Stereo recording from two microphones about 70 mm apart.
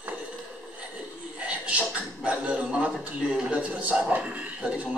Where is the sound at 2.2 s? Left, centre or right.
Centre.